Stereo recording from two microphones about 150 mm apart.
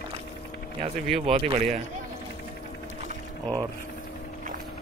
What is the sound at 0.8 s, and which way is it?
Speech, 40° right (ahead or behind).